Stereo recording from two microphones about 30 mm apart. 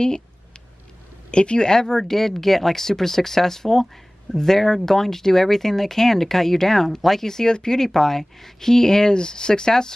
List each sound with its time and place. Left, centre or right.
1.3 s speech: left
1.7 s speech: left; by 7.2 s centre
7.2 s speech: centre